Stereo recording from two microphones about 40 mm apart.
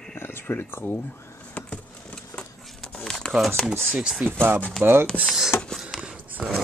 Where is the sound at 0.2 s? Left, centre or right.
Left.